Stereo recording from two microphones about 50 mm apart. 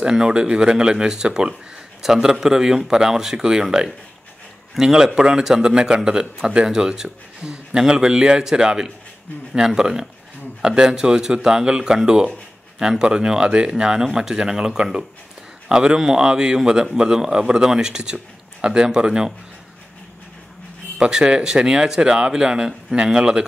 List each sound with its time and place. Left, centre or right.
0.0 s a man's voice: centre
21.0 s a man's voice: centre